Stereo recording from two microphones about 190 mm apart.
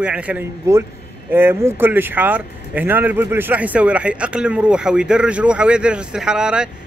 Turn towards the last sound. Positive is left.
turn(degrees=-5)  # may be behind; listen again after turning